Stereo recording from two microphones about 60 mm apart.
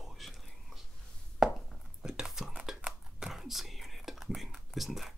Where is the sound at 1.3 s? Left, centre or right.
Centre.